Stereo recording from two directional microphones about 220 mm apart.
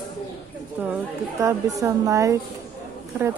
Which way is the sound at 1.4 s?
15° right (ahead or behind).